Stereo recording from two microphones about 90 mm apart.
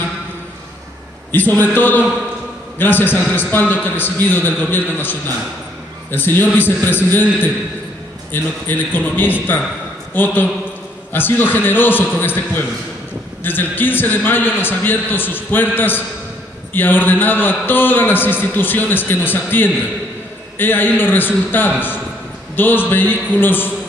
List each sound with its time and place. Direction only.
1.3 s a man's voice: 20° left (ahead or behind)
6.1 s a man's voice: 25° left (ahead or behind)
8.3 s a man's voice: 20° left (ahead or behind)